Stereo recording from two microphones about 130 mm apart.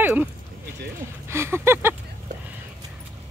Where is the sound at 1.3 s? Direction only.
20° right (ahead or behind).